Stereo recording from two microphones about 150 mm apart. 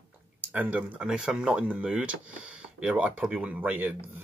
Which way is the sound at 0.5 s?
10° right (ahead or behind).